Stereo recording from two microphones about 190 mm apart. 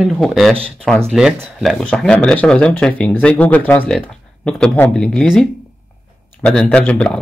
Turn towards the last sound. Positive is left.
turn(degrees=5)  # may be behind; listen again after turning